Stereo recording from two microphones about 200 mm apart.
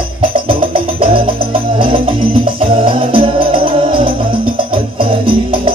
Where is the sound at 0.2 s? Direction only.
25° right (ahead or behind).